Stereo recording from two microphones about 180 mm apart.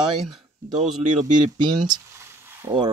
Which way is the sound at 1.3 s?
25° right (ahead or behind).